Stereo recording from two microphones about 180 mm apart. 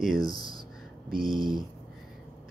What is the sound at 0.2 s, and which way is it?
Speech, 20° left (ahead or behind).